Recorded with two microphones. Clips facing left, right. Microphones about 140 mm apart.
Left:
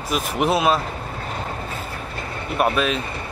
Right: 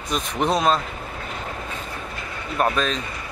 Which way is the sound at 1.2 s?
35° left (ahead or behind).